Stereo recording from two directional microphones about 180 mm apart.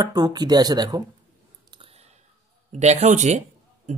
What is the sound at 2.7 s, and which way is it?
Speech, 40° right (ahead or behind).